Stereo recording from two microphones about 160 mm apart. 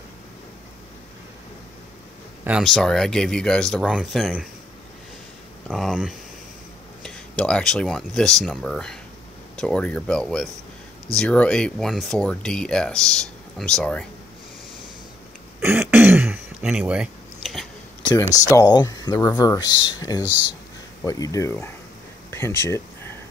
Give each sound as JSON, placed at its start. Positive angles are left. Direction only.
{"t": 2.4, "sound": "speech", "side_deg": 0}
{"t": 5.7, "sound": "speech", "side_deg": 0}
{"t": 15.6, "sound": "throat clearing", "side_deg": -15}
{"t": 18.1, "sound": "speech", "side_deg": 20}
{"t": 22.3, "sound": "a sound", "side_deg": 15}